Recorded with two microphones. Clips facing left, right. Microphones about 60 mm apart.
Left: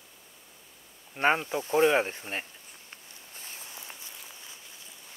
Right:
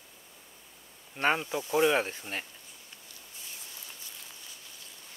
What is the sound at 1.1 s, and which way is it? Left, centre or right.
Speech, centre.